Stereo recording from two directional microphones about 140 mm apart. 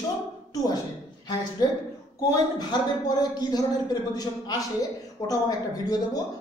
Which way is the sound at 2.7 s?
30° left (ahead or behind).